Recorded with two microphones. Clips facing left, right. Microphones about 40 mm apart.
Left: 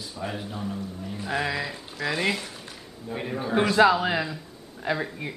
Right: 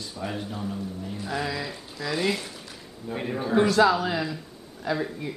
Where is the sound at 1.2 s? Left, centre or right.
Left.